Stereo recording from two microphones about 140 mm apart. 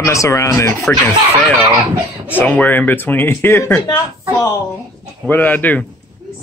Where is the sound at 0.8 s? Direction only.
10° left (ahead or behind).